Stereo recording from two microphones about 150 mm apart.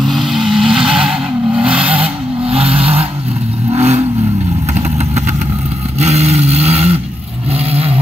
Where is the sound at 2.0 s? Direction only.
40° right (ahead or behind).